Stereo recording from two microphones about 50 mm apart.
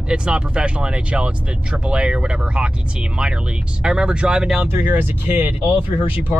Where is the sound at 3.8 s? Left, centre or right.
Centre.